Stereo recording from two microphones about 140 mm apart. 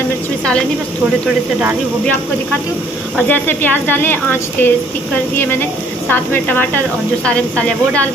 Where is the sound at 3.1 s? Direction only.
15° left (ahead or behind).